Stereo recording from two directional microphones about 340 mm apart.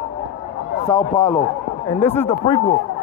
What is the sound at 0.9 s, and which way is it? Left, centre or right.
Speech, centre.